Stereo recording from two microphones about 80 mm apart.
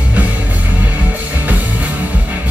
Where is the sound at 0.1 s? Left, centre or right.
Centre.